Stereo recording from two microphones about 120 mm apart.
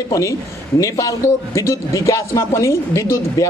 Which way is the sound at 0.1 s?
25° left (ahead or behind).